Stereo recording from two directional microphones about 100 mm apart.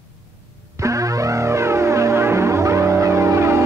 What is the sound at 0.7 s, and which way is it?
Music, 30° right (ahead or behind).